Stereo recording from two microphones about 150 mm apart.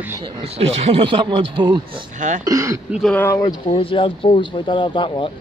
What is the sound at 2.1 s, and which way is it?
Speech, 55° right (ahead or behind).